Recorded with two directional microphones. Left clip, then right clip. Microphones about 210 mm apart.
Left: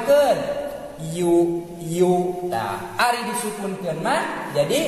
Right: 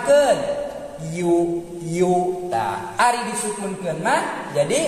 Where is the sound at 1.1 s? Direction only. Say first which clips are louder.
Left 1 dB; 10° left (ahead or behind).